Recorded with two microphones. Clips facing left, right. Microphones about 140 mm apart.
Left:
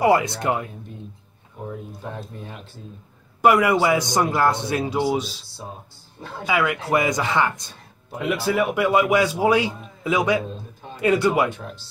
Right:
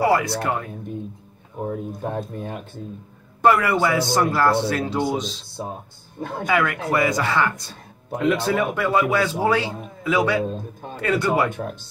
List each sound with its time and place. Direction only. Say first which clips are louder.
0.0 s speech: left 1 dB; 20° left (ahead or behind)
1.6 s speech: right 6 dB; 50° right (ahead or behind)
3.4 s speech: left 1 dB; 15° left (ahead or behind)
6.1 s speech: right 6 dB; 50° right (ahead or behind)
6.4 s speech: even; 10° left (ahead or behind)
8.2 s speech: right 1 dB; 10° left (ahead or behind)
10.5 s a sound: right 5 dB; 50° right (ahead or behind)
11.0 s speech: left 2 dB; 15° left (ahead or behind)
11.5 s speech: right 6 dB; 50° right (ahead or behind)